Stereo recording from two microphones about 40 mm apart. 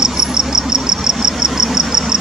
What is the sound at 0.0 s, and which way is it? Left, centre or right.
Insect, centre.